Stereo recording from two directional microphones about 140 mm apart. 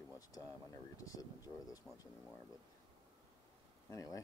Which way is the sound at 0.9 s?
25° left (ahead or behind).